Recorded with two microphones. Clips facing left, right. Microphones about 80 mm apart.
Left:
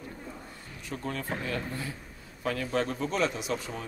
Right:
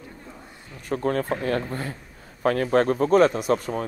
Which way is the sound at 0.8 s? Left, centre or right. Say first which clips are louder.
Right 11 dB; right.